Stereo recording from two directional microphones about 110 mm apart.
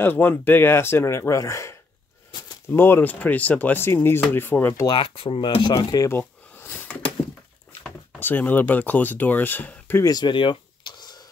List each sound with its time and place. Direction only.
0.0 s speech: 15° left (ahead or behind)
4.8 s speech: 55° left (ahead or behind)
5.8 s speech: 35° left (ahead or behind)
6.1 s a sound: 20° left (ahead or behind)
8.2 s speech: 15° left (ahead or behind)
10.0 s a sound: 40° left (ahead or behind)